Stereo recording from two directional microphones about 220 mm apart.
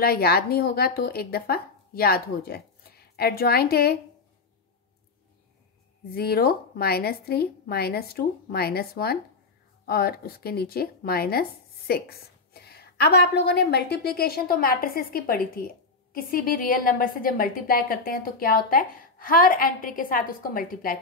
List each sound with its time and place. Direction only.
0.0 s speech: 45° left (ahead or behind)
6.1 s a woman's voice: 45° left (ahead or behind)